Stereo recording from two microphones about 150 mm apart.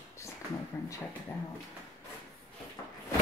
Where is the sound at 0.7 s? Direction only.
15° left (ahead or behind).